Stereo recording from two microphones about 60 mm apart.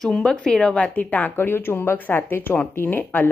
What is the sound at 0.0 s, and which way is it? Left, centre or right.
A woman's voice, centre.